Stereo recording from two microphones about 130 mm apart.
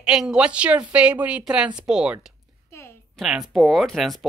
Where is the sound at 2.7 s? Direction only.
20° left (ahead or behind).